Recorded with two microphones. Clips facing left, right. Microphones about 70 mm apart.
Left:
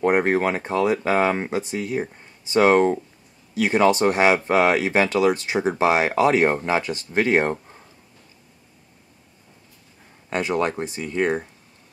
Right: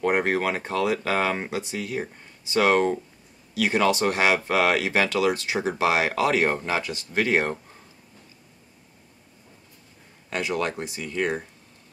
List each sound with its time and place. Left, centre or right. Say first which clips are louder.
0.0 s speech: left 4 dB; left
10.3 s speech: left 4 dB; left